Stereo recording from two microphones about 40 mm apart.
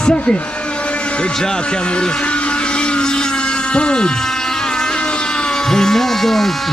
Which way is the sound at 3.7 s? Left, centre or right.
Left.